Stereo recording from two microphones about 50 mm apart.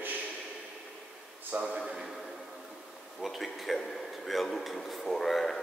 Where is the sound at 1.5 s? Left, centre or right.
Right.